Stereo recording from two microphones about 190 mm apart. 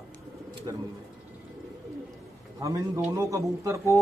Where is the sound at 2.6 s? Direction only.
15° right (ahead or behind).